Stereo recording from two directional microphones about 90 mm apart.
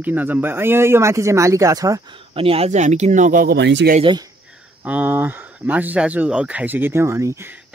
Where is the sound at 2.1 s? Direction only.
90° right.